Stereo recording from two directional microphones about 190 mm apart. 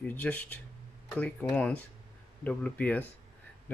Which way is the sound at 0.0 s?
10° left (ahead or behind).